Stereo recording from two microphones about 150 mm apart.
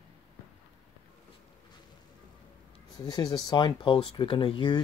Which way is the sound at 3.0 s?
25° left (ahead or behind).